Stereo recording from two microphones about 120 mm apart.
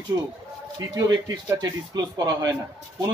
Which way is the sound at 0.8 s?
35° right (ahead or behind).